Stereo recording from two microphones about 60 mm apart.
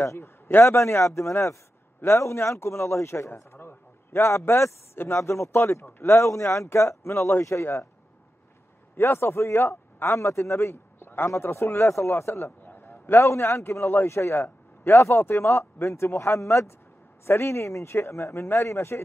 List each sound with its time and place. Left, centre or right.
0.0 s a man's voice: left
3.5 s a sound: left
4.5 s a man's voice: left
8.9 s speech: left
11.1 s a man's voice: left
12.6 s a sound: left
13.2 s a man's voice: left